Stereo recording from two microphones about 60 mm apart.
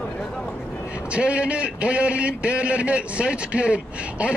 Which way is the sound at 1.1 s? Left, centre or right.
Centre.